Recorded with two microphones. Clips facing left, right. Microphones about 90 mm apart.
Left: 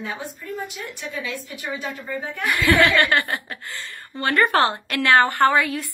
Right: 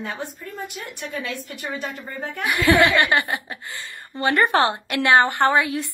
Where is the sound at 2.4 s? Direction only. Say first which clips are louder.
Right 1 dB; 20° right (ahead or behind).